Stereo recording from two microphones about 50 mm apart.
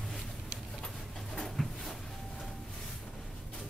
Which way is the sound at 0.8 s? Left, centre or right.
Centre.